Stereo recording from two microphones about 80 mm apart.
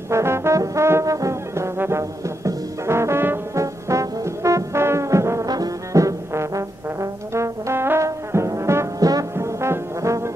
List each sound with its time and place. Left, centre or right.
0.1 s brass instrument: right
3.5 s brass instrument: right
5.5 s brass instrument: right